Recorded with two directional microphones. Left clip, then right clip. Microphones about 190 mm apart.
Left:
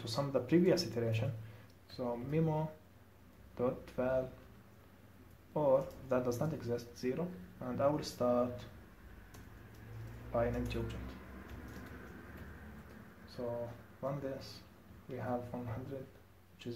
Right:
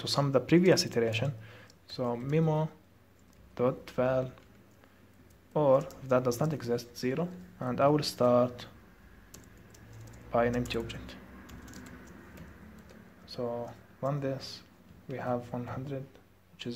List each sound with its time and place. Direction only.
0.0 s speech: 30° right (ahead or behind)
5.5 s speech: 30° right (ahead or behind)
10.3 s speech: 35° right (ahead or behind)
14.0 s speech: 30° right (ahead or behind)